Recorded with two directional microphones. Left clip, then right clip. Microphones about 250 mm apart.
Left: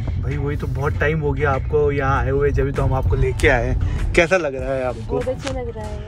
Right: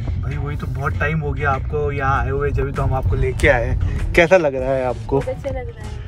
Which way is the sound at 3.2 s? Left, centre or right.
Centre.